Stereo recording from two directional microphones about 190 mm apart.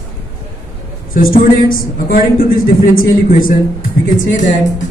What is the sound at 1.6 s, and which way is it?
A woman's voice, 50° left (ahead or behind).